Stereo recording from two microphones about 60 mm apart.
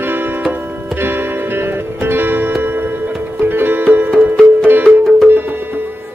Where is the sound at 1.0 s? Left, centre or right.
Right.